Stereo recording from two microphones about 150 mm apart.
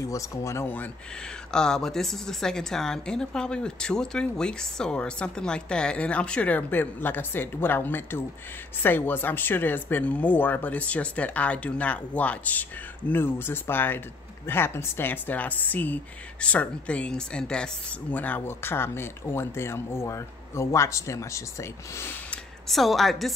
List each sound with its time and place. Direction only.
0.0 s speech: 20° left (ahead or behind)
1.5 s a woman's voice: 5° left (ahead or behind)
22.7 s a woman's voice: centre (ahead or behind)